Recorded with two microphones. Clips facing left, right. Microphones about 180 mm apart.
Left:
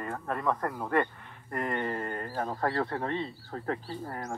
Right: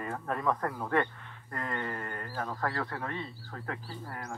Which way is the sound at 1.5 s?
20° left (ahead or behind).